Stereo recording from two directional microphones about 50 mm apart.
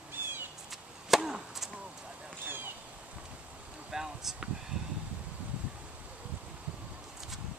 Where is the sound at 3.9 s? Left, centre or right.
Centre.